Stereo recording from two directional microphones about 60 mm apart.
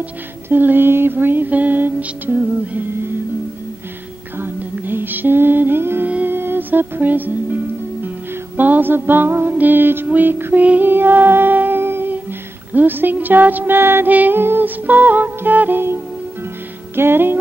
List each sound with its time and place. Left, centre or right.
0.5 s music: right
4.4 s music: right
6.0 s humming: right
6.3 s music: right